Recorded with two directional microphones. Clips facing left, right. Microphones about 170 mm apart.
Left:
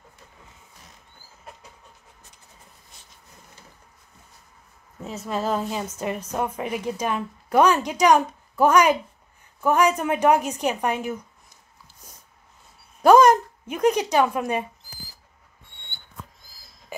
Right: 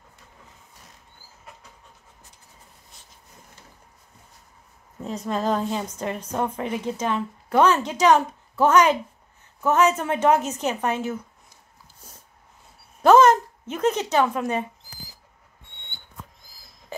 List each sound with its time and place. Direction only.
5.0 s a woman's voice: 5° left (ahead or behind)
13.0 s speech: 10° left (ahead or behind)
15.7 s rodents: 20° right (ahead or behind)